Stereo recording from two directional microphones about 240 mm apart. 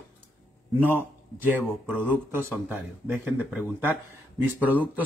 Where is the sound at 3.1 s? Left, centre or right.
Centre.